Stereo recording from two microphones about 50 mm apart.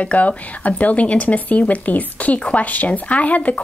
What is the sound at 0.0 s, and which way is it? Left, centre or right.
Speech, left.